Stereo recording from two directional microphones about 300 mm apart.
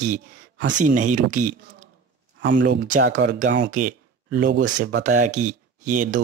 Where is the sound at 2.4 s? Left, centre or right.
Right.